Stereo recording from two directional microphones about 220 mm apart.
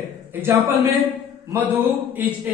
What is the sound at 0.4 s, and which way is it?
A man's voice, 10° right (ahead or behind).